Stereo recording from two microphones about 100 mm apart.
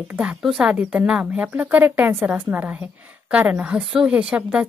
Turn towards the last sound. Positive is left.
turn(degrees=-10)  # may be behind; listen again after turning